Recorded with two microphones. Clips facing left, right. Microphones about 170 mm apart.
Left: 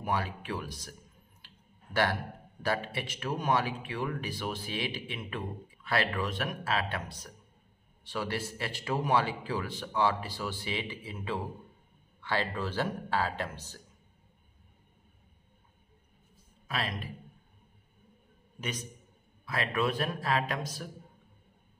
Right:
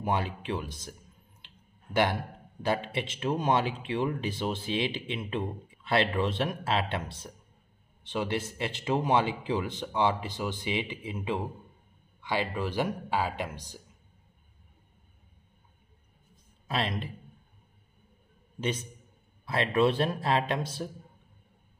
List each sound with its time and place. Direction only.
0.0 s speech: 25° right (ahead or behind)
1.4 s a sound: 20° right (ahead or behind)
2.6 s a man's voice: 20° right (ahead or behind)
16.6 s speech: 25° right (ahead or behind)
18.6 s speech: 25° right (ahead or behind)